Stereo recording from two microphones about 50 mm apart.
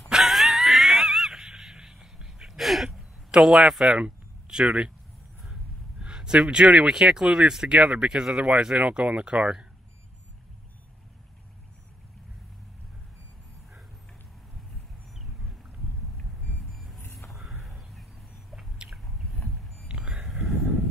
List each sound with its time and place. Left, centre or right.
0.1 s wheeze: centre
4.5 s speech: centre
5.9 s speech: centre
16.2 s reversing beeps: centre
16.8 s vehicle: centre
17.3 s a sound: centre
19.3 s vehicle: left
19.9 s a sound: right
20.2 s a sound: centre